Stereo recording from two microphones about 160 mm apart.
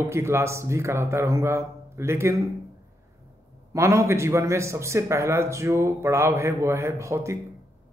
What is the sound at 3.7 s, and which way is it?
A man's voice, 15° right (ahead or behind).